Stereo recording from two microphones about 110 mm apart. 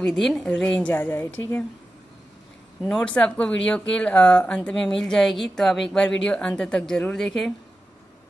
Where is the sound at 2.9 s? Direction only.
5° left (ahead or behind).